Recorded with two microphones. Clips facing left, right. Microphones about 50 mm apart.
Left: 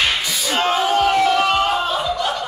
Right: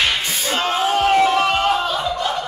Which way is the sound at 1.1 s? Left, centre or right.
Centre.